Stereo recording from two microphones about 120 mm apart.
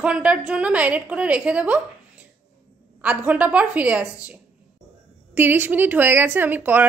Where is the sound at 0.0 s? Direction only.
10° right (ahead or behind).